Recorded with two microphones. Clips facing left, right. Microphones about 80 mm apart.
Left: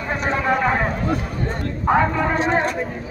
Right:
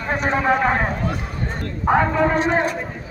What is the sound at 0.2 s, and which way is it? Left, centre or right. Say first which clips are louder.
Speech: right 1 dB; centre.